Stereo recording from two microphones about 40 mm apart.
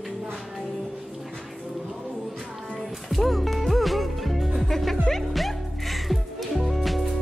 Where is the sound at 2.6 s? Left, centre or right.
Centre.